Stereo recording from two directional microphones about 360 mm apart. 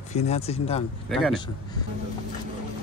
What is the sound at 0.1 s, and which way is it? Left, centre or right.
Speech, centre.